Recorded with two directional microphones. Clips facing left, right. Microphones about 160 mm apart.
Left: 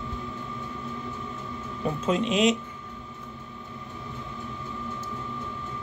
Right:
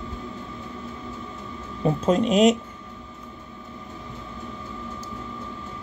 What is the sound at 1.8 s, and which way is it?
Speech, 40° right (ahead or behind).